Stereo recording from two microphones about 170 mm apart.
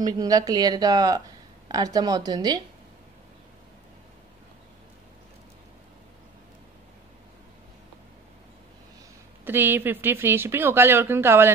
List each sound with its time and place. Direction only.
0.0 s speech: 20° right (ahead or behind)
9.4 s speech: 10° right (ahead or behind)